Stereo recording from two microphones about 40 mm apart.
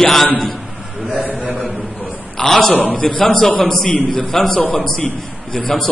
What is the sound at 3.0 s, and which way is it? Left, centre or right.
A man's voice, centre.